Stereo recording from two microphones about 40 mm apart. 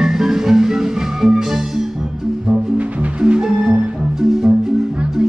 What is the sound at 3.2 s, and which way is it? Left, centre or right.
Music, right.